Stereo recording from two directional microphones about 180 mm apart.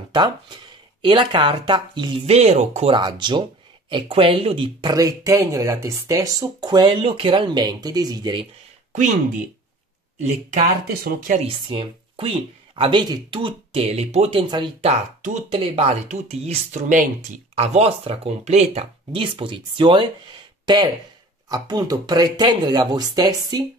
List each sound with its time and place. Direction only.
0.1 s speech: 25° right (ahead or behind)
3.0 s speech: 25° right (ahead or behind)
10.2 s speech: 45° right (ahead or behind)
10.9 s speech: 55° right (ahead or behind)
11.4 s speech: 30° right (ahead or behind)
14.9 s speech: 40° right (ahead or behind); by 23.6 s 20° right (ahead or behind)